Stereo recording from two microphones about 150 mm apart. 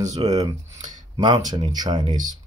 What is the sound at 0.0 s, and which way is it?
A man's voice, 25° right (ahead or behind).